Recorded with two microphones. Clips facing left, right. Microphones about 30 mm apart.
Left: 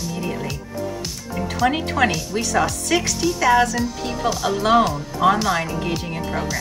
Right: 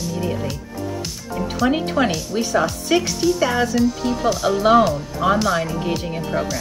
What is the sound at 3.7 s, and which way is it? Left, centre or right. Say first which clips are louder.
Speech: right 5 dB; centre.